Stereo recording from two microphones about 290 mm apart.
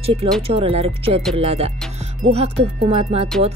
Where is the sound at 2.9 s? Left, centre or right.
Right.